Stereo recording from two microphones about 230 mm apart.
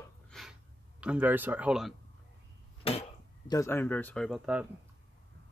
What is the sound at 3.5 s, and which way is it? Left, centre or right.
Speech, centre.